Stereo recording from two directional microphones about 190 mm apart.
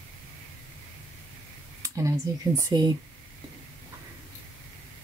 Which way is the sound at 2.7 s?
20° right (ahead or behind).